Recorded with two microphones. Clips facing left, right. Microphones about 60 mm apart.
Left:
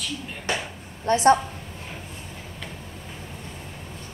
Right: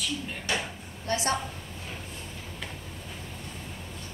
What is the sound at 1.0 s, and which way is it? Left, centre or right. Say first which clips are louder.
Speech: left 11 dB; left.